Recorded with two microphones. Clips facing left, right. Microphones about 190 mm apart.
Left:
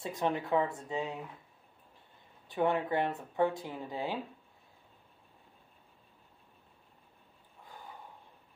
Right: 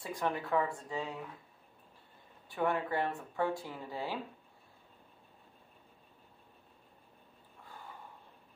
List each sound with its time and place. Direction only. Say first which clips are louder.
0.0 s speech: left 3 dB; 20° left (ahead or behind)
2.4 s speech: left 3 dB; 20° left (ahead or behind)